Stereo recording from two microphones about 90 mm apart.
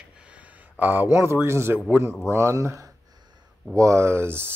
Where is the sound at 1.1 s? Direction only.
30° right (ahead or behind).